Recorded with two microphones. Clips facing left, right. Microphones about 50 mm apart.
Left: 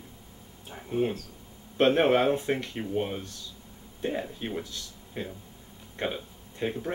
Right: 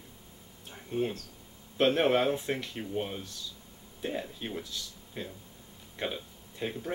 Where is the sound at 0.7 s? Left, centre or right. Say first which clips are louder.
Left 4 dB; centre.